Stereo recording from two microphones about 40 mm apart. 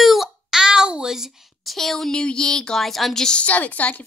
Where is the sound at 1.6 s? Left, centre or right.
Centre.